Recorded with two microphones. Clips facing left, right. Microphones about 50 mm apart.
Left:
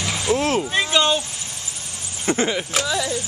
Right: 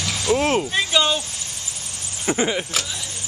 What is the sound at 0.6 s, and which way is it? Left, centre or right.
Speech, centre.